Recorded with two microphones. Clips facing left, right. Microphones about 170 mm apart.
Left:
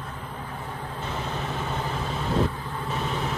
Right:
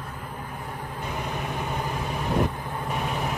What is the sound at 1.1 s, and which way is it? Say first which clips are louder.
Vehicle: even; 15° right (ahead or behind).